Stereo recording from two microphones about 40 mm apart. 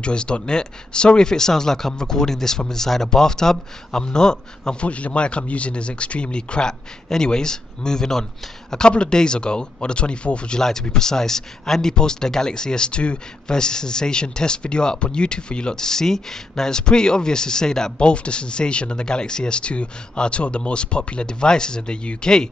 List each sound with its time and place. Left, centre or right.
0.0 s speech: left
4.7 s speech: left
10.6 s speech: centre